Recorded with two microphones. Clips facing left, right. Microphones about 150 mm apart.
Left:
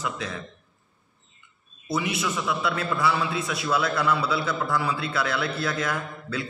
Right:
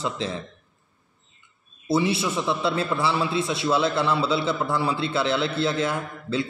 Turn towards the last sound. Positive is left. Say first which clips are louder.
# right 4 dB
turn(degrees=-25)  # may be behind; listen again after turning